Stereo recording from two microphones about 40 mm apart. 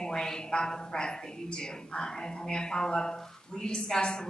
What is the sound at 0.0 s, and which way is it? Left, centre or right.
A woman's voice, centre.